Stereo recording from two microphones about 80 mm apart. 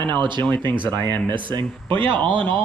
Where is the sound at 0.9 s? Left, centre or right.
Right.